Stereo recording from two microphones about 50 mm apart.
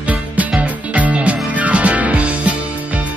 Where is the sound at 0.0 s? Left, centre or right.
Right.